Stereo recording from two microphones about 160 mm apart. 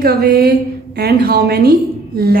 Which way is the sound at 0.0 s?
75° right (ahead or behind).